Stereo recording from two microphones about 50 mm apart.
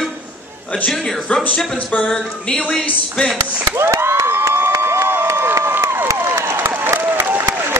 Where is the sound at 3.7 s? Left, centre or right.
Right.